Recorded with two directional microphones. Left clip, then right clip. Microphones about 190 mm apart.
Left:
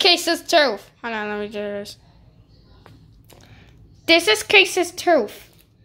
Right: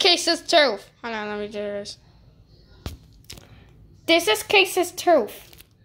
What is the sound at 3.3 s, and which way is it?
A woman's voice, 5° left (ahead or behind).